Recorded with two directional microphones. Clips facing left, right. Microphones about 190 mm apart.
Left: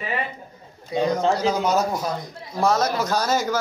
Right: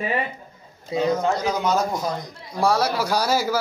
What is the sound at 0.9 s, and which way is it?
Speech, 25° right (ahead or behind).